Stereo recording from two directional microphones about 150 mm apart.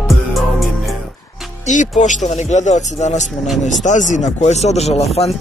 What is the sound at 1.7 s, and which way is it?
Speech, 55° left (ahead or behind).